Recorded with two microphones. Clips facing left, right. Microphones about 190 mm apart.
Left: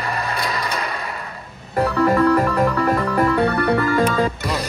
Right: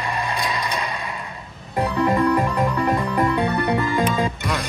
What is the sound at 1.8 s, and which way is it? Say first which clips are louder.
Music: left 3 dB; 15° right (ahead or behind).